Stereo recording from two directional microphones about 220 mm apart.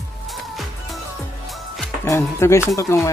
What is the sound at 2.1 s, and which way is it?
Music, 10° left (ahead or behind).